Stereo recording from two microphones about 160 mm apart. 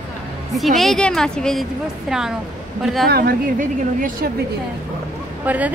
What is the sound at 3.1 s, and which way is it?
A woman's voice, 65° right (ahead or behind).